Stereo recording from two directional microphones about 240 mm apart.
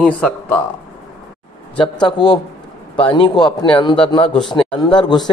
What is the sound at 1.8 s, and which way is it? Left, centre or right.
Speech, centre.